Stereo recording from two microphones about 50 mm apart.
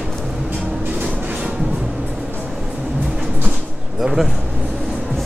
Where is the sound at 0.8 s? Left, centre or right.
Right.